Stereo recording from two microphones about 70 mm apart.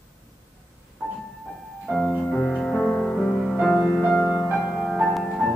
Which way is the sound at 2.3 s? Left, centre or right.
Centre.